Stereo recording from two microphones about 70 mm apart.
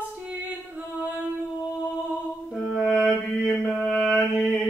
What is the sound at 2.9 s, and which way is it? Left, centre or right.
Mantra, centre.